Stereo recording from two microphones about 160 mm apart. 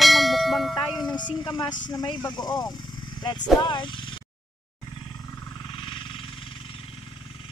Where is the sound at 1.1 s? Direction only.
30° left (ahead or behind).